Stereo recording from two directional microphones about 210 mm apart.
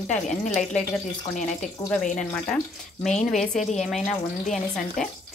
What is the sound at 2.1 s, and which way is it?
Speech, 5° left (ahead or behind).